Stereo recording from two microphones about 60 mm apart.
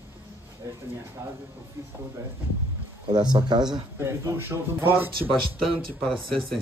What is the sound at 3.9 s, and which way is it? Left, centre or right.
A man's voice, right.